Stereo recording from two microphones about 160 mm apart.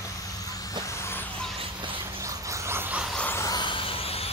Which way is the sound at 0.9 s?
15° left (ahead or behind).